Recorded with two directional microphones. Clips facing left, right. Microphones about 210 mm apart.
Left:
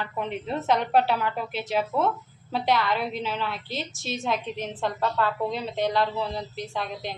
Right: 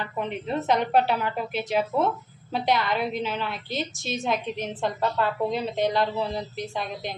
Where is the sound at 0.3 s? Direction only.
Centre (ahead or behind).